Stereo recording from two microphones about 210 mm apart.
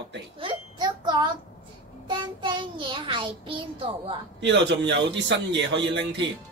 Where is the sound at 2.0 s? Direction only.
20° right (ahead or behind).